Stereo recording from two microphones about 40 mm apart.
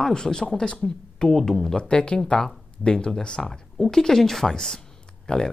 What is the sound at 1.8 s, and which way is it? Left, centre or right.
Speech, left.